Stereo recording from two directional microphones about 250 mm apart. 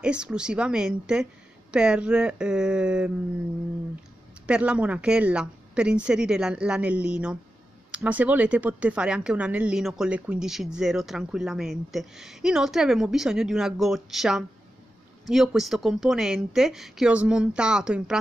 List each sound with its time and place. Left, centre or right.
0.0 s speech: centre
4.5 s speech: centre